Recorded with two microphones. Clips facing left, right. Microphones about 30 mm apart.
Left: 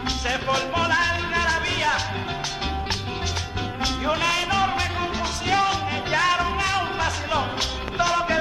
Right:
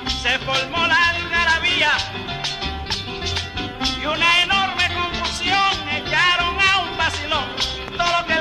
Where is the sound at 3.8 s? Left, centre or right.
Right.